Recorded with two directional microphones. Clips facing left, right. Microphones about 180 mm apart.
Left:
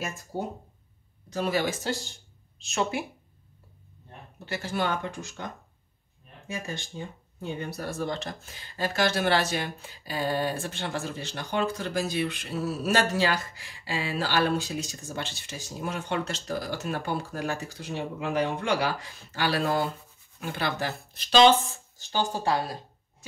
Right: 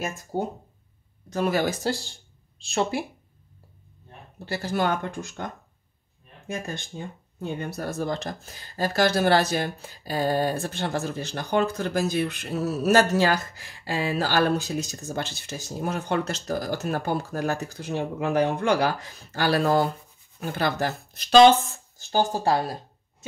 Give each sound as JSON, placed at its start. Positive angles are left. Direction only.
{"t": 1.3, "sound": "speech", "side_deg": -50}
{"t": 4.5, "sound": "speech", "side_deg": -40}